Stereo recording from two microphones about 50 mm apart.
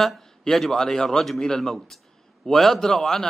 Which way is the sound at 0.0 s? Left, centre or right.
Centre.